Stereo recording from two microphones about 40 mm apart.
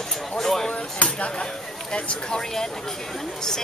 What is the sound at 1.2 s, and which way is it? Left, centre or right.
Speech, left.